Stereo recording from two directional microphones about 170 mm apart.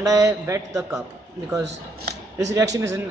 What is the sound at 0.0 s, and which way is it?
Speech, 20° right (ahead or behind).